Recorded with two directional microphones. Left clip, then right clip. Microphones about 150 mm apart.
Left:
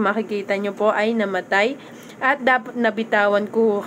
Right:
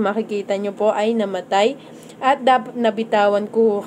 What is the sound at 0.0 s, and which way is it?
A woman's voice, 20° right (ahead or behind).